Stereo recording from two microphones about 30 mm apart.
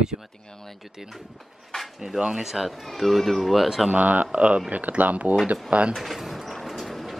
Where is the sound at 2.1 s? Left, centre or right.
Right.